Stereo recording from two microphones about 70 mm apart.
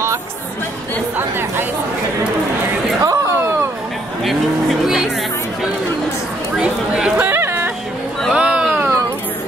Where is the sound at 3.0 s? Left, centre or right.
Right.